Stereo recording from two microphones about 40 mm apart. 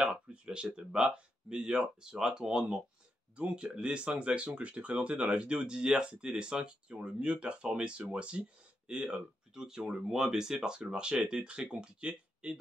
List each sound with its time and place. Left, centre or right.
0.0 s speech: right